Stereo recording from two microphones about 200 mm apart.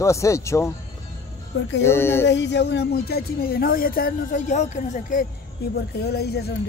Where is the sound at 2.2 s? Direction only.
60° left (ahead or behind); by 5.2 s 35° left (ahead or behind).